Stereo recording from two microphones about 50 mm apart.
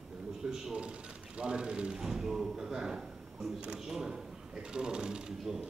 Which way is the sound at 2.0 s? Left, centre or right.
Centre.